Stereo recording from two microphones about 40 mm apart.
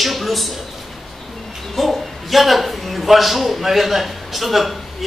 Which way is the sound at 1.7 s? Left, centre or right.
Centre.